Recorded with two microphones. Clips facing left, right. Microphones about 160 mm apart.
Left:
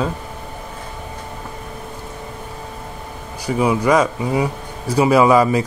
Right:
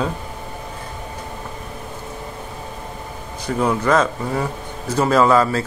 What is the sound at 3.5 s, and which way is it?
Speech, 10° left (ahead or behind).